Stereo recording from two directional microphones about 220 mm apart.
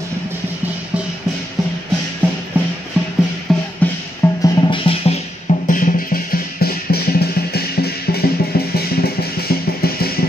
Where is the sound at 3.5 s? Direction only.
Centre (ahead or behind).